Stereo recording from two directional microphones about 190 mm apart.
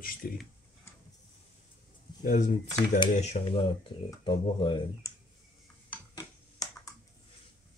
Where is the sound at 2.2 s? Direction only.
45° left (ahead or behind); by 4.7 s 30° left (ahead or behind).